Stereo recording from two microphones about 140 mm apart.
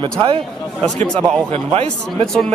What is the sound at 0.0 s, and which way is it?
Speech, 40° right (ahead or behind).